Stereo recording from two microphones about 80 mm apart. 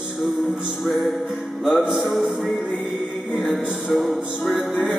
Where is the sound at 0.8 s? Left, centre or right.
Centre.